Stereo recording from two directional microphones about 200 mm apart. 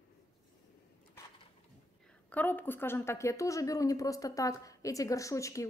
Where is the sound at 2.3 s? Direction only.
10° left (ahead or behind).